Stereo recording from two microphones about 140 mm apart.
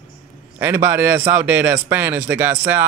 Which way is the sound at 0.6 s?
15° right (ahead or behind).